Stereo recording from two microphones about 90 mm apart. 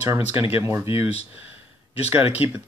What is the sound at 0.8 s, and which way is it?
Speech, 90° left.